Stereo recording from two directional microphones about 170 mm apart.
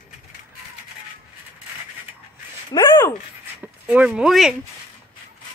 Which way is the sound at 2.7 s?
25° left (ahead or behind).